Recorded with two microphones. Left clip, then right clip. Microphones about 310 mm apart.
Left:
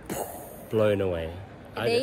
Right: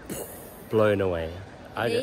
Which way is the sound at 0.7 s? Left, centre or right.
Centre.